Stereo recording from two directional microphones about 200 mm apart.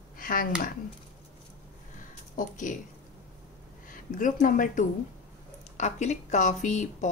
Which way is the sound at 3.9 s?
40° left (ahead or behind).